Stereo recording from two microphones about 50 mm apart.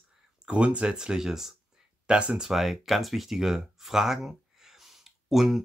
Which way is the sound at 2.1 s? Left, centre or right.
Right.